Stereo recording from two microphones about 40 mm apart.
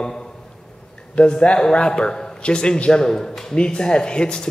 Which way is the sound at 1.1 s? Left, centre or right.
Left.